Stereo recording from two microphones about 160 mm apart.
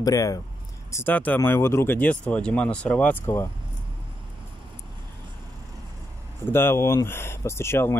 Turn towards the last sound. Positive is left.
turn(degrees=15)  # may be behind; listen again after turning